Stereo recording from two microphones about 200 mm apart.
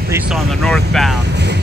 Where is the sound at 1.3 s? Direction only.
60° right (ahead or behind).